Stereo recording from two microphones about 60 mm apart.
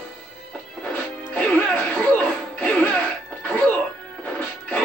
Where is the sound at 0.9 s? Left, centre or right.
Left.